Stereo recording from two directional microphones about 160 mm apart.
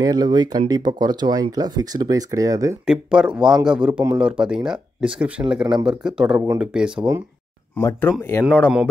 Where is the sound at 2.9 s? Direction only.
5° right (ahead or behind).